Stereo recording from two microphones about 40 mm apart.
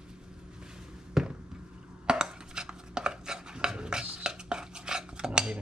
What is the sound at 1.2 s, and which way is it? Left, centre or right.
Basketball bounce, centre.